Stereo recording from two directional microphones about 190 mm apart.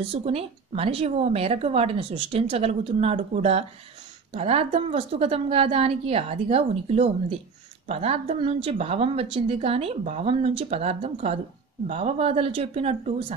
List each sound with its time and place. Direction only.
0.0 s a woman's voice: 30° right (ahead or behind)